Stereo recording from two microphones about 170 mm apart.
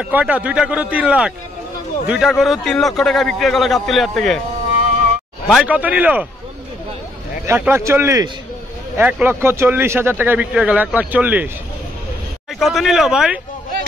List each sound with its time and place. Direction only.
0.0 s a man's voice: 5° right (ahead or behind)
5.5 s speech: 5° right (ahead or behind)
7.4 s speech: 15° right (ahead or behind)
12.5 s a man's voice: centre (ahead or behind)